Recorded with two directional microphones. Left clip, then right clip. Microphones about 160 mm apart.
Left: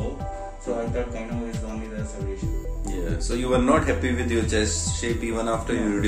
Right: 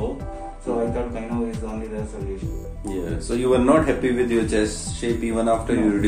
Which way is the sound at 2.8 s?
Centre (ahead or behind).